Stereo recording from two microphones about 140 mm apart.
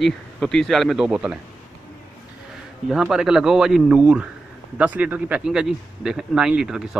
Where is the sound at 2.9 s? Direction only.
Centre (ahead or behind).